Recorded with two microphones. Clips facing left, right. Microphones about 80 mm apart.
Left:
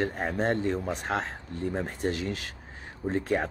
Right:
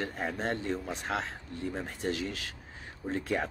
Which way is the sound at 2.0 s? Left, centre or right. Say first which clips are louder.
Left 3 dB; left.